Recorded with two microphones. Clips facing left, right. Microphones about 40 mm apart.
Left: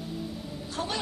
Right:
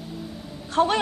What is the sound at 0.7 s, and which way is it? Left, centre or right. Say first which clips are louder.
Speech: right 12 dB; right.